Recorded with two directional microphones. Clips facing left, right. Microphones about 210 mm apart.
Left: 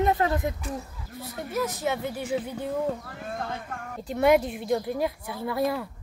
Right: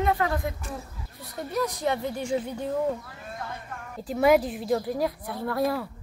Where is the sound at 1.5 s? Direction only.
5° left (ahead or behind).